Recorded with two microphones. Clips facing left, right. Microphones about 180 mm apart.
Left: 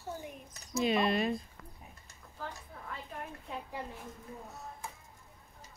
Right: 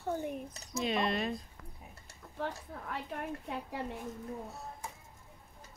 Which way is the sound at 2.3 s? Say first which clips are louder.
Right 6 dB; 70° right (ahead or behind).